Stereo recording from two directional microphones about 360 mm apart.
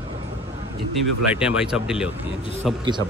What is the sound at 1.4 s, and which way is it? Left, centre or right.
Speech, centre.